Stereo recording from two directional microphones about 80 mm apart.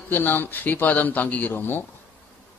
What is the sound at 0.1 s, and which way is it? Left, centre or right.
Speech, left.